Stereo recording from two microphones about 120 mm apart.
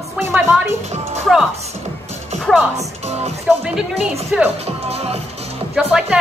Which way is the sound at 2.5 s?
5° left (ahead or behind).